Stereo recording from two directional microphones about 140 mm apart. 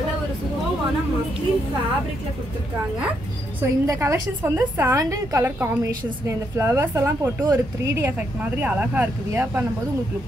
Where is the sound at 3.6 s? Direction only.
20° right (ahead or behind).